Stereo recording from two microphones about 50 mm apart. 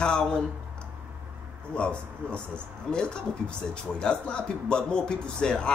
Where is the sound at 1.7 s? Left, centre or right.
Left.